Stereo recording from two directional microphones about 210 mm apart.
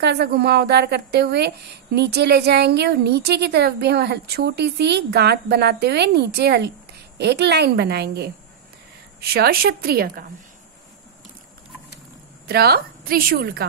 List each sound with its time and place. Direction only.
0.0 s a woman's voice: 50° right (ahead or behind)
12.4 s a woman's voice: 50° right (ahead or behind)